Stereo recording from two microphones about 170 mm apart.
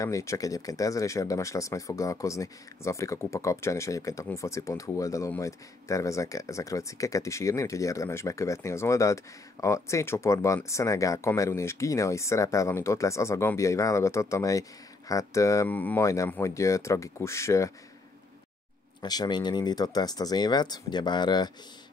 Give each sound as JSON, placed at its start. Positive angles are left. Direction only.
{"t": 0.0, "sound": "speech", "side_deg": 20}
{"t": 18.9, "sound": "speech", "side_deg": 25}